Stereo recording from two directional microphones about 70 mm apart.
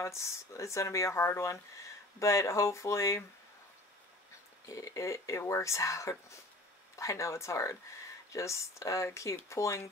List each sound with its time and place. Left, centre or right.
0.0 s speech: left
4.6 s speech: left